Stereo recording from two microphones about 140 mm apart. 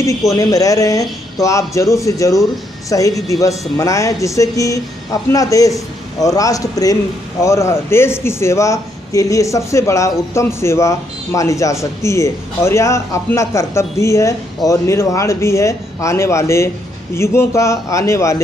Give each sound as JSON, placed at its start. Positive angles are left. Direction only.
{"t": 0.4, "sound": "a man's voice", "side_deg": 25}